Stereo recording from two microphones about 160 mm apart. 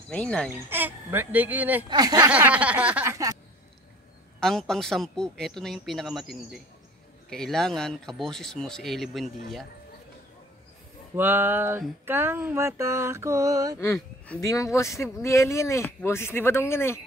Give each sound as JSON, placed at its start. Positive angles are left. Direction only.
{"t": 0.1, "sound": "speech", "side_deg": 5}
{"t": 0.5, "sound": "mantra", "side_deg": -10}
{"t": 1.9, "sound": "speech", "side_deg": -25}
{"t": 2.3, "sound": "mantra", "side_deg": -10}
{"t": 4.4, "sound": "speech", "side_deg": 5}
{"t": 11.1, "sound": "mantra", "side_deg": -10}
{"t": 13.9, "sound": "a sound", "side_deg": 10}
{"t": 14.4, "sound": "speech", "side_deg": 20}